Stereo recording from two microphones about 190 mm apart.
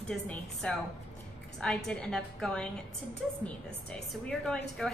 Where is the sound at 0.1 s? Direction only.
5° left (ahead or behind).